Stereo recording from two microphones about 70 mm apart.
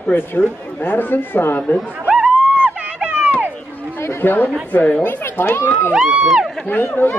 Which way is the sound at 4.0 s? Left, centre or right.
Left.